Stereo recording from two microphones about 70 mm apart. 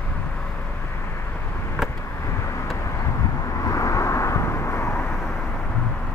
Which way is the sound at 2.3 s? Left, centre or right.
Left.